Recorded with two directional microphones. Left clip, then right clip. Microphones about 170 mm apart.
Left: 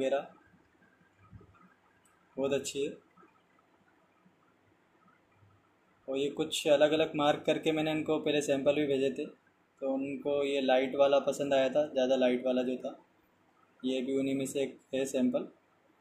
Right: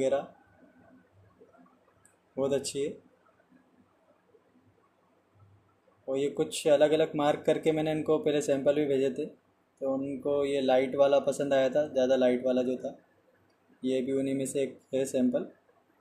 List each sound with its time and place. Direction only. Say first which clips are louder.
2.4 s speech: right 2 dB; 20° right (ahead or behind)
6.0 s speech: right 3 dB; 25° right (ahead or behind)